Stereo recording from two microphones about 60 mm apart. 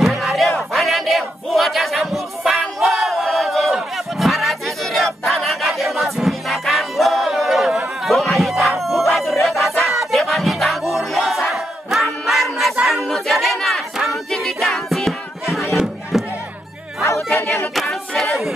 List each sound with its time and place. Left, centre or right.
0.0 s battle cry: centre
8.0 s crowd: centre
9.8 s music: centre
12.8 s choir: centre
13.9 s music: centre
17.0 s bow-wow: left
17.7 s choir: centre